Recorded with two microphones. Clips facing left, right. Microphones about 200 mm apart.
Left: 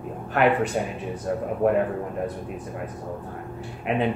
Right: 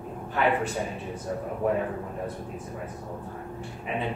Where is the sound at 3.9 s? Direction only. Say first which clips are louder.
Left 7 dB; 70° left (ahead or behind).